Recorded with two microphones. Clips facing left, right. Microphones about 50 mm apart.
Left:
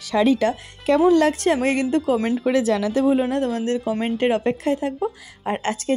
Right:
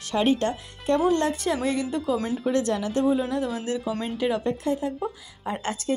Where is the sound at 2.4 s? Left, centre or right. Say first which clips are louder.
Left 4 dB; left.